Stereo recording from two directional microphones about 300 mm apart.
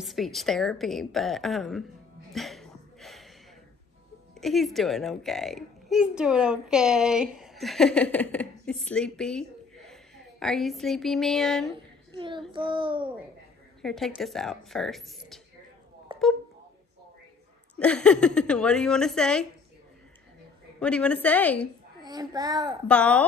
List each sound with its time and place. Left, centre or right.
0.0 s a woman's voice: centre
2.3 s a sound: centre
4.4 s a child's voice: centre
12.4 s a child's voice: centre
13.8 s a woman's voice: centre
16.1 s a sound: centre
17.7 s a woman's voice: centre
20.8 s a woman's voice: centre
22.0 s a child's voice: centre
22.8 s a woman's voice: centre